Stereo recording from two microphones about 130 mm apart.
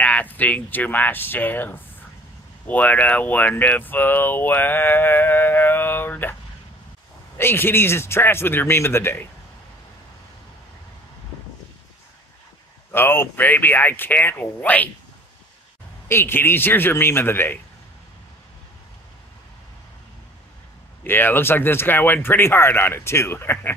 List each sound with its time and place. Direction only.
0.0 s speech: 10° left (ahead or behind)
7.3 s speech: 15° left (ahead or behind)
12.9 s speech: 15° left (ahead or behind)
16.1 s speech: 20° left (ahead or behind)
21.0 s speech: 15° left (ahead or behind)